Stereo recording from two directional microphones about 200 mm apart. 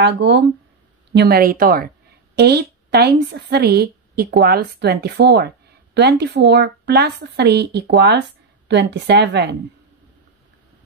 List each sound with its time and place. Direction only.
0.0 s a woman's voice: 60° right (ahead or behind)